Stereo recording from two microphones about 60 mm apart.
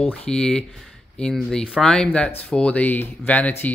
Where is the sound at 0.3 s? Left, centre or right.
Centre.